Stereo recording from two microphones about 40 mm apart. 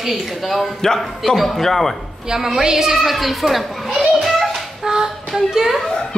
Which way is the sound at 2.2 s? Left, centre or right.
Centre.